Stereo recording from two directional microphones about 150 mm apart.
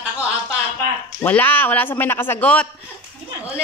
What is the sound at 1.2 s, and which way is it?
A man's voice, 10° left (ahead or behind).